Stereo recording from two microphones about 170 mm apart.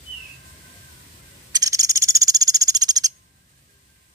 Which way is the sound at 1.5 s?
20° right (ahead or behind).